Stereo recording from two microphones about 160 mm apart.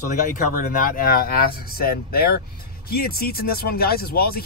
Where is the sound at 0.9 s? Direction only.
65° left (ahead or behind).